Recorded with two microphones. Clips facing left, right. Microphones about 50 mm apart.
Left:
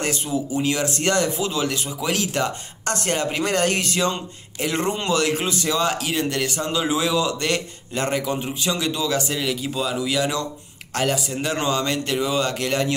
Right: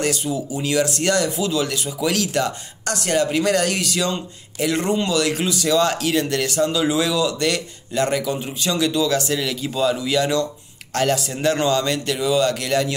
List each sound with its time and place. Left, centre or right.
0.0 s speech: left
5.8 s speech: centre